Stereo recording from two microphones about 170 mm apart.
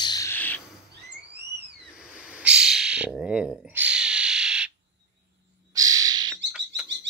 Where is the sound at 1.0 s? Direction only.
85° right.